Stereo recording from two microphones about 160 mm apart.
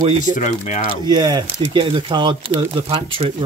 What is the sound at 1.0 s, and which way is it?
Speech, 25° right (ahead or behind).